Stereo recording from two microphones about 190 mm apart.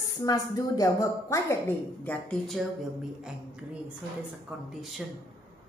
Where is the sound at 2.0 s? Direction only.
5° left (ahead or behind).